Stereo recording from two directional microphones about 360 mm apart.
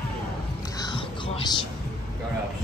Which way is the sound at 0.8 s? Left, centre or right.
Centre.